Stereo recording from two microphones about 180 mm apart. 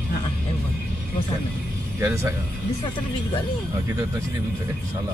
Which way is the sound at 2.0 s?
15° right (ahead or behind).